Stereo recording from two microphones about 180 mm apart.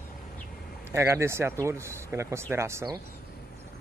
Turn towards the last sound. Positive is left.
turn(degrees=-15)  # may be behind; listen again after turning